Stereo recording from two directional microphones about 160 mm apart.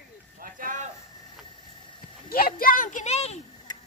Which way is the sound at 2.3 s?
65° left (ahead or behind).